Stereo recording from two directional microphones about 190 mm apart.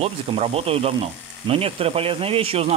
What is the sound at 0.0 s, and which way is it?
Speech, 30° right (ahead or behind).